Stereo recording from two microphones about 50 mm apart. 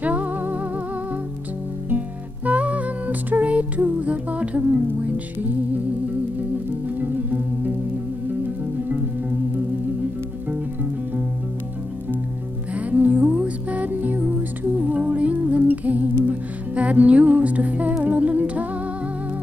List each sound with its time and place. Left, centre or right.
0.0 s music: right
1.9 s music: right
7.0 s music: right
12.7 s music: right
18.0 s humming: right